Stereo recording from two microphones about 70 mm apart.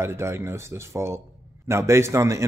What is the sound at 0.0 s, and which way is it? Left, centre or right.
Speech, right.